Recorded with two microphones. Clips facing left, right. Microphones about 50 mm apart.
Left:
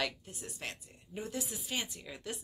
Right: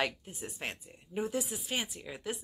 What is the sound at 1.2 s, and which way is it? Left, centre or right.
Speech, centre.